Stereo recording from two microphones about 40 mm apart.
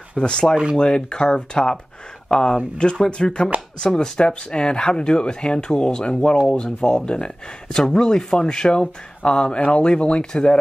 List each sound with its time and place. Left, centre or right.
0.2 s speech: left